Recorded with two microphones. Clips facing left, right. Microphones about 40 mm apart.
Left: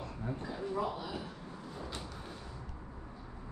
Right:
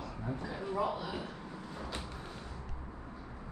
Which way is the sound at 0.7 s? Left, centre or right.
Centre.